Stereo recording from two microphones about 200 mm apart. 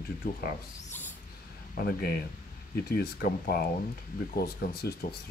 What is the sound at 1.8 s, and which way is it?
Speech, 50° left (ahead or behind).